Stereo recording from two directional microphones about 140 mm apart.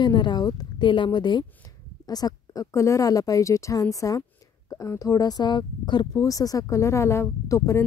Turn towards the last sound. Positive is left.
turn(degrees=20)  # may be behind; listen again after turning